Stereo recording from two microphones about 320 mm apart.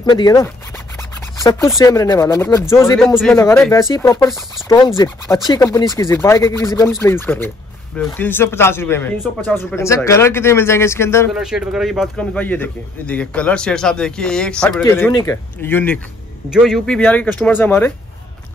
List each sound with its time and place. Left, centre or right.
0.0 s a man's voice: centre
11.3 s a man's voice: centre